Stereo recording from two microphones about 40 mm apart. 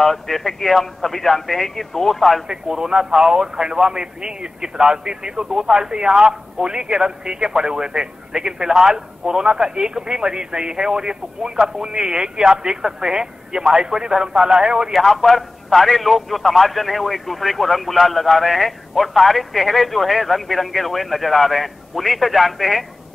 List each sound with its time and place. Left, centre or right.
0.0 s a man's voice: centre
2.4 s a man's voice: centre
14.9 s a man's voice: centre